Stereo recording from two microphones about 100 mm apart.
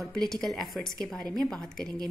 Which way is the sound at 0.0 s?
5° left (ahead or behind).